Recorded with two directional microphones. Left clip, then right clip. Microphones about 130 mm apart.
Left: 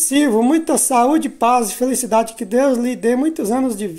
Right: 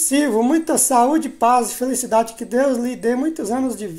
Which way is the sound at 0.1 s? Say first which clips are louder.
Left 2 dB; 25° left (ahead or behind).